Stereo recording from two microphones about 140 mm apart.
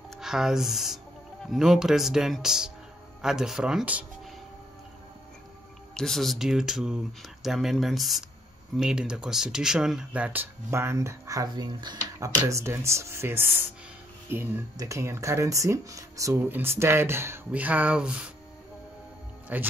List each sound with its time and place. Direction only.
0.1 s speech: 5° right (ahead or behind)
5.9 s speech: 5° left (ahead or behind); by 12.3 s 30° right (ahead or behind)
12.4 s speech: 20° right (ahead or behind)
19.5 s speech: 10° right (ahead or behind)